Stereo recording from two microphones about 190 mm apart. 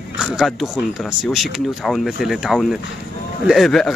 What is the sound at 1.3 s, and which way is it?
Speech, centre (ahead or behind).